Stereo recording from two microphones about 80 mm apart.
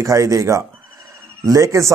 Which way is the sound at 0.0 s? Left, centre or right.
Right.